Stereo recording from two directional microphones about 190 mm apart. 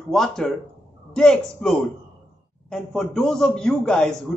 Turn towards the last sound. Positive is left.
turn(degrees=5)  # may be behind; listen again after turning